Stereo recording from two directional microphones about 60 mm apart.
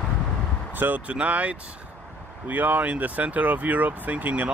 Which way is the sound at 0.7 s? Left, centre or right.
Right.